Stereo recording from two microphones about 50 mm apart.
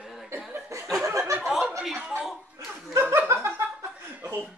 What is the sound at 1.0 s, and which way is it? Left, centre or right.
Speech, right.